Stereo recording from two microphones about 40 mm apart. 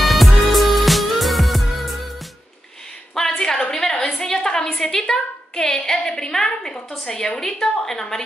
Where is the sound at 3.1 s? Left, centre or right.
Centre.